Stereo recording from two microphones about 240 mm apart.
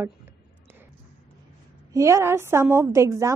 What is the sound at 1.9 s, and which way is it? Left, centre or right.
A woman's voice, centre.